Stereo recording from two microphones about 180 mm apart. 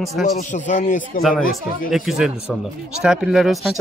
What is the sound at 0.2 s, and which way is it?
Speech, 45° left (ahead or behind).